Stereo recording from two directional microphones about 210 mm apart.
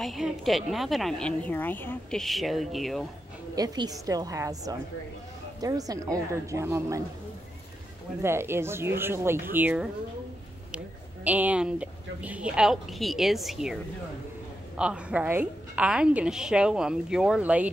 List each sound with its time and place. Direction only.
0.0 s a woman's voice: centre (ahead or behind)
3.5 s speech: 20° right (ahead or behind)
8.2 s speech: 10° right (ahead or behind)
11.2 s a woman's voice: 5° right (ahead or behind)
14.8 s a woman's voice: 5° right (ahead or behind)